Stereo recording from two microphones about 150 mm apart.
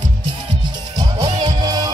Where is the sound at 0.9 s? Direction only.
25° right (ahead or behind).